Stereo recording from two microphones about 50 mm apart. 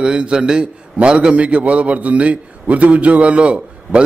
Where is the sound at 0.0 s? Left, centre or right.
Centre.